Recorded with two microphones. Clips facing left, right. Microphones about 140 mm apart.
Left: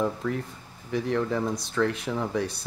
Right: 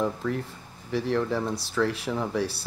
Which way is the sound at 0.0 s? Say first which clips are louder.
Even; centre (ahead or behind).